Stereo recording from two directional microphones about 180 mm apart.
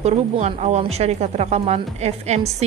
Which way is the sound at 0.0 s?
35° right (ahead or behind).